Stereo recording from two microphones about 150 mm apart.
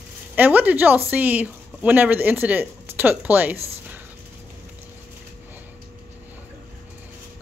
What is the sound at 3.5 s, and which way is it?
Speech, 40° right (ahead or behind).